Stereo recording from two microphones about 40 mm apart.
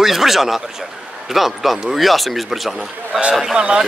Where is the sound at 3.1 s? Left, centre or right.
Right.